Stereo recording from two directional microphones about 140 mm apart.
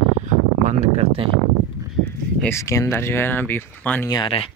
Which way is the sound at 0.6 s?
50° right (ahead or behind).